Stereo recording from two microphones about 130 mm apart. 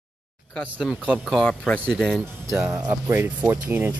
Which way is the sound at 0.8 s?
5° right (ahead or behind).